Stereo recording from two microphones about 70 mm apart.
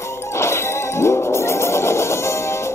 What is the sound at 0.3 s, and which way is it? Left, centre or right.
Music, left.